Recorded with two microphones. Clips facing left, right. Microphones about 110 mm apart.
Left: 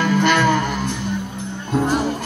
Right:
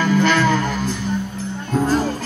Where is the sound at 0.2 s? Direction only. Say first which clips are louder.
Even; 15° left (ahead or behind).